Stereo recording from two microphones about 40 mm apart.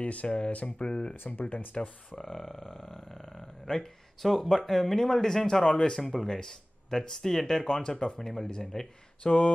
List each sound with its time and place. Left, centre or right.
0.0 s speech: left
1.1 s speech: left
1.5 s speech: left
2.1 s speech: centre